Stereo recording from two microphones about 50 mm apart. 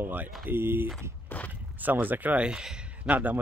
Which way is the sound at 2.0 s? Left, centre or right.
Right.